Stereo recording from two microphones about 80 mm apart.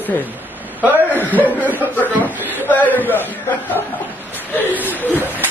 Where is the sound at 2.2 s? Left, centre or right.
Left.